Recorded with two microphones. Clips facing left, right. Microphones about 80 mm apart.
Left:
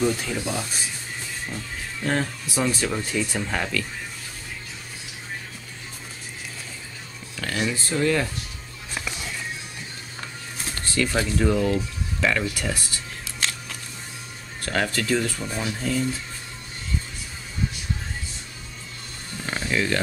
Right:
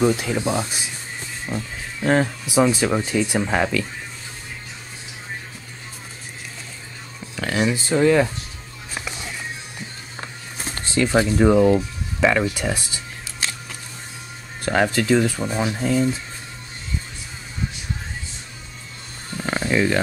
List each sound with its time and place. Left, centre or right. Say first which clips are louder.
0.0 s speech: right 5 dB; right
2.0 s speech: right 7 dB; centre
7.3 s speech: right 5 dB; right
10.6 s speech: right 4 dB; right
13.4 s a sound: even; centre
14.6 s speech: right 6 dB; centre
19.4 s a sound: right 6 dB; right
19.7 s speech: right 4 dB; centre